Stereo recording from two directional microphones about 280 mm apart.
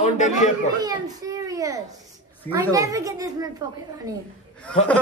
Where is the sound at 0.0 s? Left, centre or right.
Left.